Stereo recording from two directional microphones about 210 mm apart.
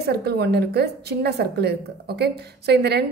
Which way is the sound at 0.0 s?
50° right (ahead or behind).